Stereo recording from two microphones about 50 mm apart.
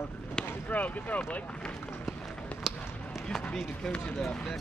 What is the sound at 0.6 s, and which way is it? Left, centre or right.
Speech, left.